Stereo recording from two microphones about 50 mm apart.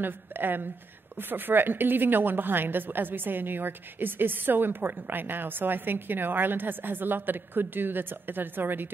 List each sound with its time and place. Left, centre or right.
0.0 s a woman's voice: right